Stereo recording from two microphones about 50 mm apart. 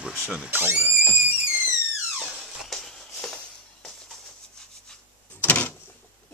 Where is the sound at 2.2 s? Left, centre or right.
Centre.